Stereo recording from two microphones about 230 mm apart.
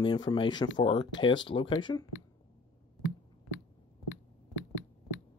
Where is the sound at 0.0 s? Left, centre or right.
Centre.